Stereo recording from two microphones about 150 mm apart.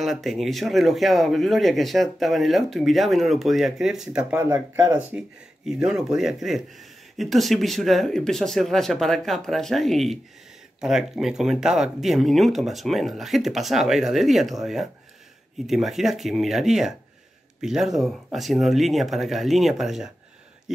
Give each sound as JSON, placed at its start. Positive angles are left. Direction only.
{"t": 0.0, "sound": "speech", "side_deg": 0}